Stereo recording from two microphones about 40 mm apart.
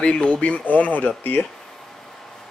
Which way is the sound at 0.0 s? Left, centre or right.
Left.